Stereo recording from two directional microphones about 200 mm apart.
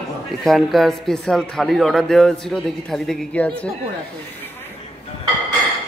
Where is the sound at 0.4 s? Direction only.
Centre (ahead or behind).